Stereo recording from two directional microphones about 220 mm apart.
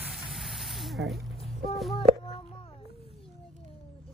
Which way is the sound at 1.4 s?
30° left (ahead or behind).